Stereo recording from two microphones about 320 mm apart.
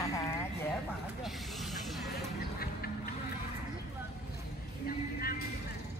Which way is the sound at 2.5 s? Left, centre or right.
Left.